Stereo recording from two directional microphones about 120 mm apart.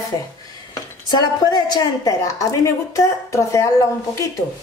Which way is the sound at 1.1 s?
35° left (ahead or behind).